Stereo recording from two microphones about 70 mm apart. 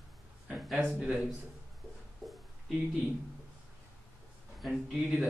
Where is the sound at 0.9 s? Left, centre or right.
Centre.